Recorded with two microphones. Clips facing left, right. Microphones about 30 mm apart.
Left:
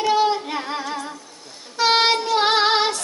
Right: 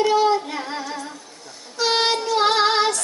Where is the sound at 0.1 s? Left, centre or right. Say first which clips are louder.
Right 1 dB; centre.